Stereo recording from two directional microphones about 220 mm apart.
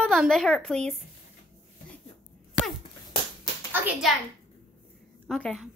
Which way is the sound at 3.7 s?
5° right (ahead or behind).